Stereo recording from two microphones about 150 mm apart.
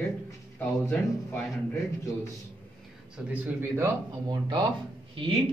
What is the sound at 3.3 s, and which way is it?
Speech, 10° right (ahead or behind).